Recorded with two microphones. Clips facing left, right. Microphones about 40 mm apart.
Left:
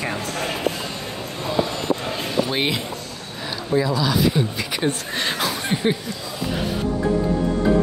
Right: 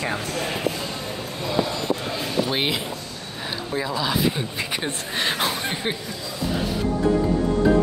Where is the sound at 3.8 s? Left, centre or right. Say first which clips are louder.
Left 3 dB; centre.